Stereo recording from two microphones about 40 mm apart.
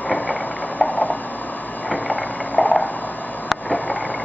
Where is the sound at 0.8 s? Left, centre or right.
Left.